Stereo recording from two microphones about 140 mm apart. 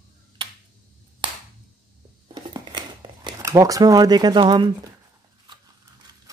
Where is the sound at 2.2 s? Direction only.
30° right (ahead or behind).